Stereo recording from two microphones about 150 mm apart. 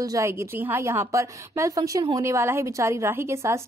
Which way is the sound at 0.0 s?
20° right (ahead or behind).